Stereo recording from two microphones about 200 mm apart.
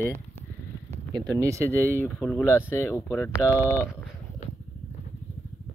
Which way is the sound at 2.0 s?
5° left (ahead or behind).